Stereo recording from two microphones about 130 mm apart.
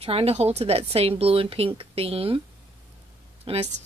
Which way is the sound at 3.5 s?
45° right (ahead or behind).